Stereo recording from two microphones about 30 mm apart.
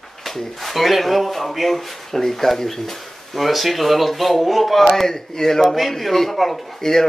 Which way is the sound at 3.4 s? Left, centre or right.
Centre.